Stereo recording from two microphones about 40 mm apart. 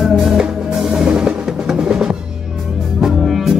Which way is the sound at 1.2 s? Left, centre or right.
Right.